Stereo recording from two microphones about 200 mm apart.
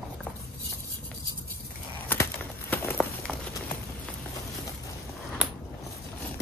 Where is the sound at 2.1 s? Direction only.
10° left (ahead or behind).